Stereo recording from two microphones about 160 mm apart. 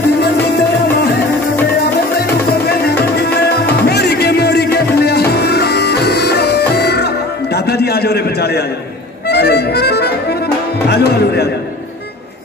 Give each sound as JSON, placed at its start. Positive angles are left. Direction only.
{"t": 3.0, "sound": "music", "side_deg": 85}
{"t": 7.5, "sound": "a sound", "side_deg": 85}
{"t": 9.3, "sound": "music", "side_deg": 90}